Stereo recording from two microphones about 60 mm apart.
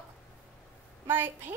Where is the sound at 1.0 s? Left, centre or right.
Right.